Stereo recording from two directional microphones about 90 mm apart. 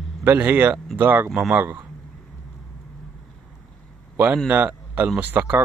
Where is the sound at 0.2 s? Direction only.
20° right (ahead or behind).